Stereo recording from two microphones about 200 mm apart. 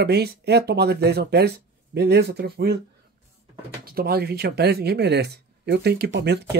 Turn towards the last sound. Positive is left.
turn(degrees=-55)  # may be behind; listen again after turning